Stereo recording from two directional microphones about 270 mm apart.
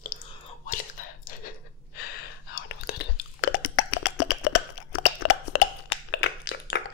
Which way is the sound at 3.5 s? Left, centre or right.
Left.